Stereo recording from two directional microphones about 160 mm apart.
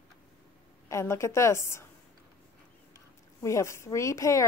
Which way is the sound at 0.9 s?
20° left (ahead or behind).